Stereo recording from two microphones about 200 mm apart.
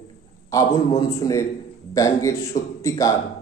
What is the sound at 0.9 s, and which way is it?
A man's voice, 15° left (ahead or behind).